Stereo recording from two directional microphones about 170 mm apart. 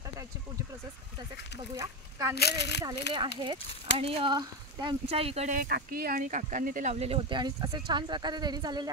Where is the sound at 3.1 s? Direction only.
90° left.